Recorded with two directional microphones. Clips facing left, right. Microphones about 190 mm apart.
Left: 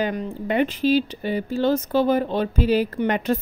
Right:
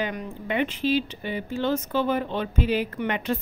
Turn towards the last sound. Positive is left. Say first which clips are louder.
# left 5 dB
turn(degrees=40)  # may be behind; listen again after turning